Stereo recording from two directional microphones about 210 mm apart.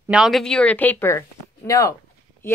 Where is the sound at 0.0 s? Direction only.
5° right (ahead or behind).